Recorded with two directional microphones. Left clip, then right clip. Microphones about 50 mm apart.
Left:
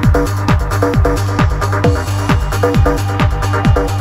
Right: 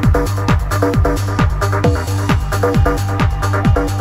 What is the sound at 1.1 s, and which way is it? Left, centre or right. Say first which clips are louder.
Music: left 2 dB; right.